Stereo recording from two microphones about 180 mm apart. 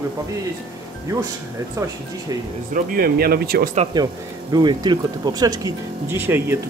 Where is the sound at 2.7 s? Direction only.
55° right (ahead or behind).